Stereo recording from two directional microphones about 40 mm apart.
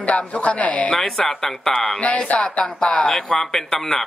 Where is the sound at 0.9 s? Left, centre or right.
Centre.